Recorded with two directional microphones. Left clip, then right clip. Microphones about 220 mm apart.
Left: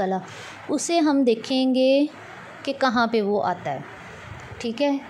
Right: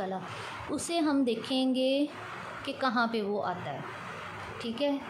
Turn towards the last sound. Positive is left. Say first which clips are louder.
# left 7 dB
turn(degrees=30)  # may be behind; listen again after turning